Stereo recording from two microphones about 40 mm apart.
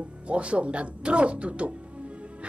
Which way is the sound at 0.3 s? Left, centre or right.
Right.